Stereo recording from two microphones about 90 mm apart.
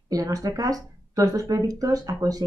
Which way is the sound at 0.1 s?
45° right (ahead or behind).